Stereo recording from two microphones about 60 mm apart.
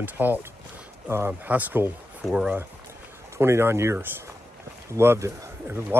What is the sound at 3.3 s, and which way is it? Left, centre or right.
Speech, right.